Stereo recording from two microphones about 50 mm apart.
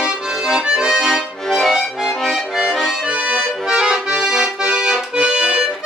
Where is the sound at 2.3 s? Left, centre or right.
Centre.